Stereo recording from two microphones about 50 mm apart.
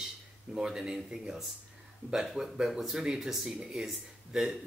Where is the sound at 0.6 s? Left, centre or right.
Centre.